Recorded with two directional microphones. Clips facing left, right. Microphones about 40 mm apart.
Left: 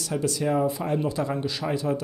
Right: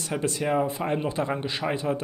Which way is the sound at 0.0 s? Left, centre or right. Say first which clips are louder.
Left 1 dB; right.